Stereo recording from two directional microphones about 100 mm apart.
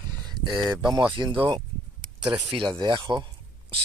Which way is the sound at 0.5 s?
5° right (ahead or behind).